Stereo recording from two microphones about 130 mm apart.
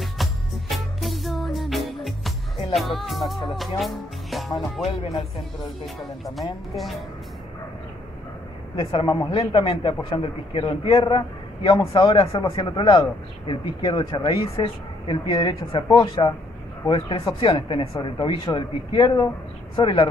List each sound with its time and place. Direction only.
0.0 s music: centre (ahead or behind)
5.9 s speech: centre (ahead or behind)
8.9 s a man's voice: 35° left (ahead or behind)
11.1 s a man's voice: 30° left (ahead or behind)